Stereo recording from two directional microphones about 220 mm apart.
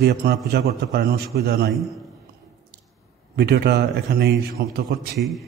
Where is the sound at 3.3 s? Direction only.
45° right (ahead or behind).